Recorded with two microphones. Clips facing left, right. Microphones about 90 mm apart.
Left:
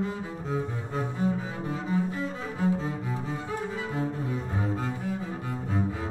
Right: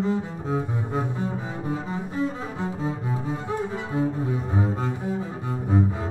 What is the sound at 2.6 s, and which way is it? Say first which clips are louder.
Cello: left 2 dB; 20° right (ahead or behind).